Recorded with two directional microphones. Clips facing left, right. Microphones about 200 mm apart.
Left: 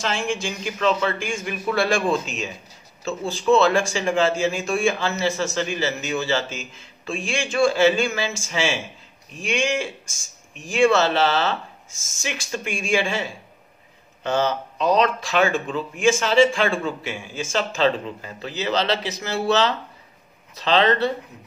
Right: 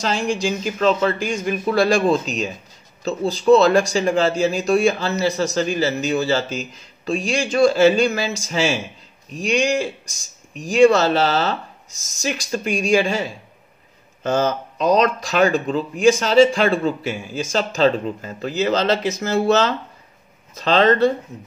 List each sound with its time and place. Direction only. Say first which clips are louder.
0.0 s speech: right 4 dB; 40° right (ahead or behind)